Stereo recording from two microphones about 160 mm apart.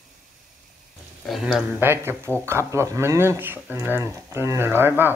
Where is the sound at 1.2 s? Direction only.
Centre (ahead or behind).